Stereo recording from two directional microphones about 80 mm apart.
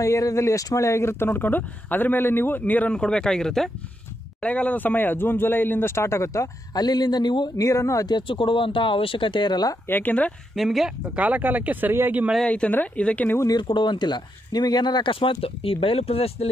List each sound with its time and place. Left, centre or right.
0.0 s speech: left
3.0 s speech: centre
4.4 s speech: centre; by 6.5 s left
6.7 s a man's voice: left
7.5 s speech: left
8.1 s speech: left
9.8 s speech: left
10.5 s speech: centre
11.1 s speech: centre
12.4 s speech: centre
13.6 s speech: left